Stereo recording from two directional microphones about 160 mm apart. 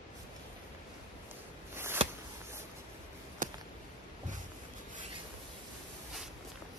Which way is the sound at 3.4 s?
60° right (ahead or behind).